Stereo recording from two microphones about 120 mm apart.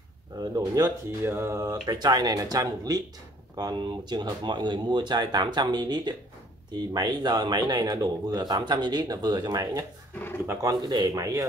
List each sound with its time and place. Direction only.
0.4 s speech: 30° right (ahead or behind)
0.8 s speech: 20° right (ahead or behind)
1.9 s speech: 35° right (ahead or behind)
10.1 s pigeon: 20° left (ahead or behind)
10.4 s speech: 20° right (ahead or behind)
10.7 s speech: 35° right (ahead or behind)